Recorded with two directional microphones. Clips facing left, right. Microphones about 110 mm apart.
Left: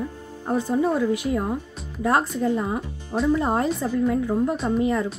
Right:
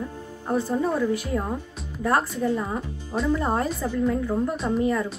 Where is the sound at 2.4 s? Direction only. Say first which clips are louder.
Left 2 dB; 15° left (ahead or behind).